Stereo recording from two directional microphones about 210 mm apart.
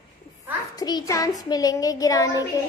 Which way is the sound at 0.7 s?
20° left (ahead or behind).